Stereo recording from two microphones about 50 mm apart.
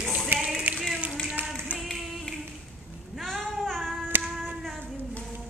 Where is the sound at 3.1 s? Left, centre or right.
Centre.